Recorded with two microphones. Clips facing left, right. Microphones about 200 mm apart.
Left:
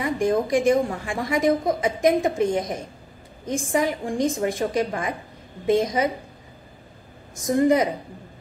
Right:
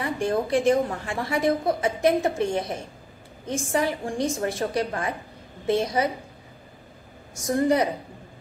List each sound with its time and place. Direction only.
0.0 s a woman's voice: 15° left (ahead or behind)
7.4 s a woman's voice: 20° left (ahead or behind)